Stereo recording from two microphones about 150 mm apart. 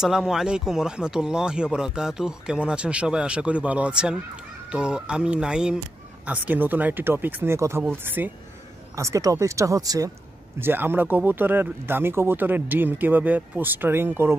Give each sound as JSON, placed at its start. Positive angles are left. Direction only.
{"t": 0.0, "sound": "speech", "side_deg": -5}